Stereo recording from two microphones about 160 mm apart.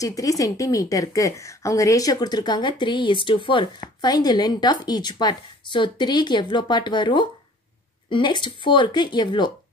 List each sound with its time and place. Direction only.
0.0 s a woman's voice: 20° left (ahead or behind)